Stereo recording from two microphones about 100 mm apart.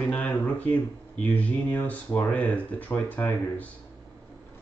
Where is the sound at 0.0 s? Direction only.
15° left (ahead or behind).